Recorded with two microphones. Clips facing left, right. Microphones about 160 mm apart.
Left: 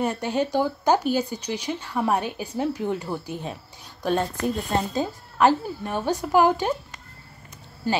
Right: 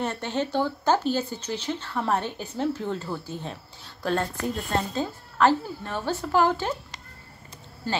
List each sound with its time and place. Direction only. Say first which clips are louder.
0.0 s speech: left 4 dB; 10° left (ahead or behind)
7.8 s speech: left 4 dB; 15° left (ahead or behind)